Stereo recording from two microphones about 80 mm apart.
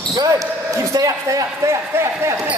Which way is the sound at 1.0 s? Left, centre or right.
Right.